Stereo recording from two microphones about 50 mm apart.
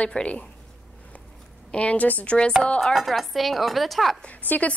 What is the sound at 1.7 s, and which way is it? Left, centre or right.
Speech, left.